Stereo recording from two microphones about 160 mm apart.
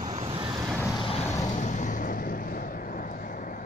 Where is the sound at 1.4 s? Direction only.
50° left (ahead or behind).